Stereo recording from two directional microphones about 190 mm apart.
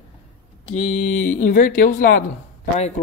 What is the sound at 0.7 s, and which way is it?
Speech, 40° left (ahead or behind).